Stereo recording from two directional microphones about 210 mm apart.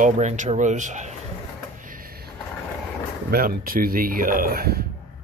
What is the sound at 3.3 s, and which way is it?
Speech, 45° right (ahead or behind).